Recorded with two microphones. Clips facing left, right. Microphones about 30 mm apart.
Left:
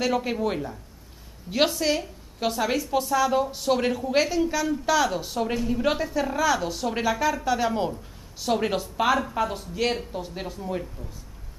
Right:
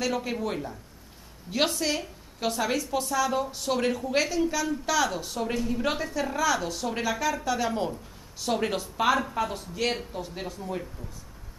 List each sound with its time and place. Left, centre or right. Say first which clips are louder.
0.0 s a woman's voice: left 4 dB; centre